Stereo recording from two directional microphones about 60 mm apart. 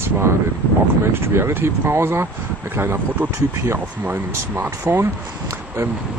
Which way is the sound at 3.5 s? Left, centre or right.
Right.